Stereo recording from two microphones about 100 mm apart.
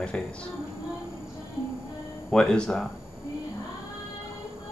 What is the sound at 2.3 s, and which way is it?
Speech, 5° left (ahead or behind).